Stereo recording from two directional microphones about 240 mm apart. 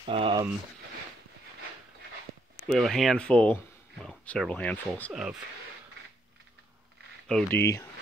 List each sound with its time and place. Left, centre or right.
0.0 s speech: right
2.7 s speech: centre
7.2 s speech: centre